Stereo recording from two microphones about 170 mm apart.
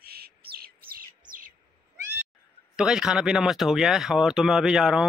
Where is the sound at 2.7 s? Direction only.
5° right (ahead or behind).